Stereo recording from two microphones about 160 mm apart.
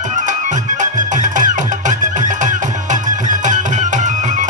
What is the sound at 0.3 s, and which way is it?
Music, 50° right (ahead or behind).